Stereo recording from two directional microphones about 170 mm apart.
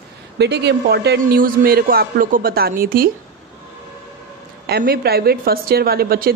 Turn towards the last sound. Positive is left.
turn(degrees=-65)  # may be behind; listen again after turning